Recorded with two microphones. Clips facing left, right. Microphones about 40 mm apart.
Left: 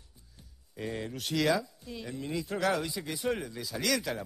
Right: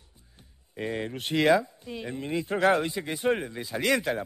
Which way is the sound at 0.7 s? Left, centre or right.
Right.